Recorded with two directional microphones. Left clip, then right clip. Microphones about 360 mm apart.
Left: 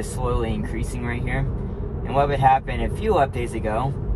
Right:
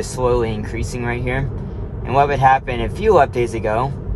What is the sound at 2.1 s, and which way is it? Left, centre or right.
A man's voice, right.